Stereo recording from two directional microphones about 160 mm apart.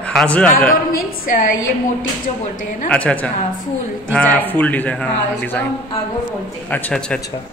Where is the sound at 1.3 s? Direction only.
55° left (ahead or behind).